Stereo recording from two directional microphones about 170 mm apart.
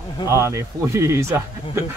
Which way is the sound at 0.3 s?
15° right (ahead or behind).